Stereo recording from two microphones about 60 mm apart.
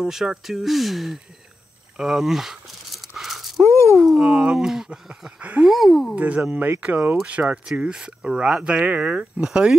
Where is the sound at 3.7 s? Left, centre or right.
Left.